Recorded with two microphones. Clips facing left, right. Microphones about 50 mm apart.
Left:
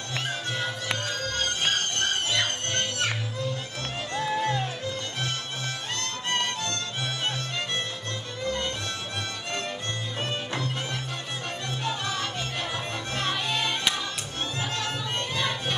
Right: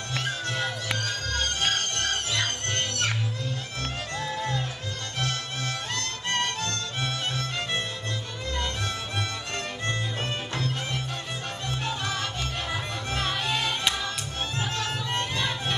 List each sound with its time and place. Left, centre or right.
0.8 s music: left
13.5 s music: centre